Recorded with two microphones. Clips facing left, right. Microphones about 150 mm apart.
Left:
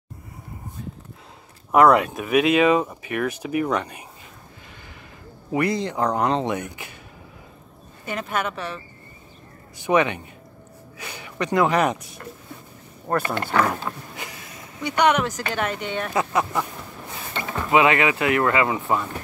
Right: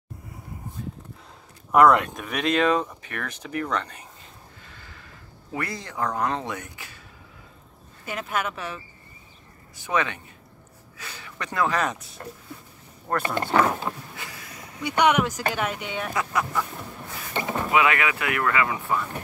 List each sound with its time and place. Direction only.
1.7 s speech: 5° left (ahead or behind)
5.5 s speech: 20° left (ahead or behind)
8.0 s speech: 5° right (ahead or behind)
9.8 s speech: 15° left (ahead or behind)
13.2 s speech: 20° right (ahead or behind)
13.7 s speech: 10° right (ahead or behind)
14.1 s vehicle: 20° left (ahead or behind)
14.8 s speech: 10° right (ahead or behind)
16.1 s speech: 25° left (ahead or behind)
17.3 s mechanisms: 20° right (ahead or behind)
17.6 s speech: 25° left (ahead or behind)